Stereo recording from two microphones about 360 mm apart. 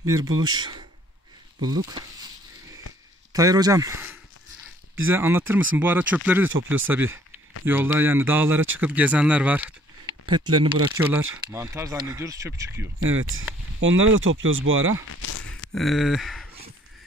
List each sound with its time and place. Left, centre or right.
0.0 s speech: centre
3.3 s speech: centre
8.5 s speech: right
8.8 s speech: centre
13.1 s speech: right
15.0 s a sound: left
15.7 s speech: centre